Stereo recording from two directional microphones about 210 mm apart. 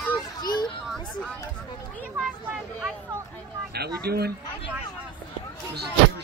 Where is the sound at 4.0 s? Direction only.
50° right (ahead or behind).